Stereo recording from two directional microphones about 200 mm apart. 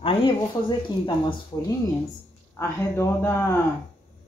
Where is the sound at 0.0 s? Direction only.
25° left (ahead or behind).